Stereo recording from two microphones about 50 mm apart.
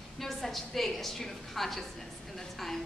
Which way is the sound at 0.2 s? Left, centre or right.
Centre.